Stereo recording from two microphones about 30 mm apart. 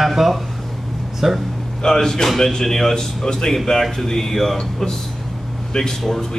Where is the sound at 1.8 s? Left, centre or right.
Centre.